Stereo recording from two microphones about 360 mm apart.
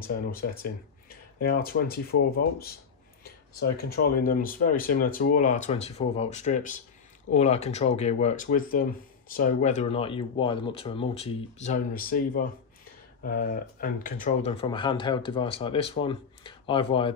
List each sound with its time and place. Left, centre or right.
0.0 s speech: left